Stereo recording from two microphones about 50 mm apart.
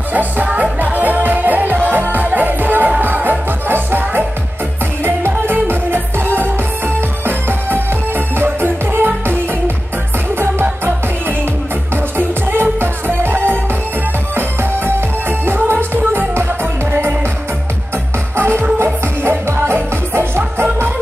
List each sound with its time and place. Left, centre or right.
0.1 s music: right
5.3 s music: right
11.9 s music: right
18.3 s music: right